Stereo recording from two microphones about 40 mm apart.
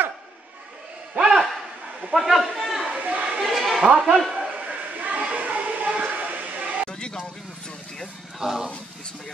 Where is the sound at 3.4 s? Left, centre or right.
Centre.